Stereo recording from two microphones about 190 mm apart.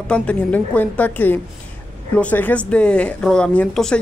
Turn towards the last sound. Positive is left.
turn(degrees=5)  # may be behind; listen again after turning